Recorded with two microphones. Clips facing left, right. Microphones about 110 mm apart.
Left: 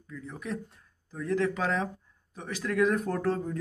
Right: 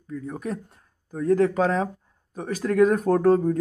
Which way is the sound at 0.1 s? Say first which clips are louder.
Right 6 dB; 45° right (ahead or behind).